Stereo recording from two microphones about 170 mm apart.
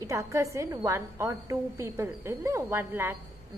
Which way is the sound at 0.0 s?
15° right (ahead or behind).